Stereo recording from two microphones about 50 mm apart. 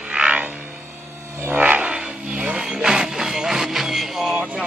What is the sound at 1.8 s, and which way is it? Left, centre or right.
Music, centre.